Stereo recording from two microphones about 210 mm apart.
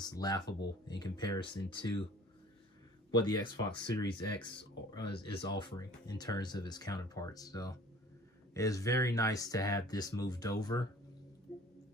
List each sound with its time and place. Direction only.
0.0 s speech: 20° left (ahead or behind)
3.1 s speech: 20° left (ahead or behind)